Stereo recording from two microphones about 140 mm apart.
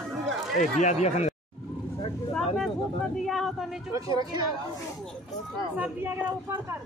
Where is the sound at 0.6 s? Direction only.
60° left (ahead or behind).